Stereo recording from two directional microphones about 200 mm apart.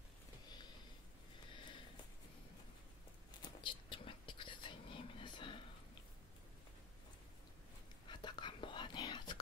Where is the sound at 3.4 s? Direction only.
25° left (ahead or behind).